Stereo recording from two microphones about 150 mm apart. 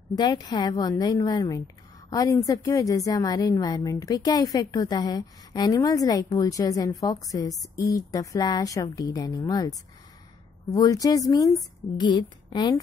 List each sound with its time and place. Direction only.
0.1 s a woman's voice: 25° left (ahead or behind)